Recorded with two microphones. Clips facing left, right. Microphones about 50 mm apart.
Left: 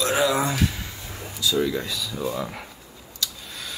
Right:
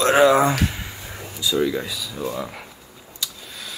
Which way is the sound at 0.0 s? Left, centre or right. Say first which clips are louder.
Right 7 dB; right.